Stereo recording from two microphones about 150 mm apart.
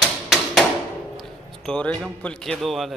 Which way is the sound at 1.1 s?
Centre (ahead or behind).